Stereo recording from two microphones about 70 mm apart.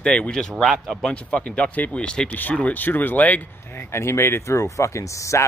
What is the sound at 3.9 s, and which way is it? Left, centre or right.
Speech, left.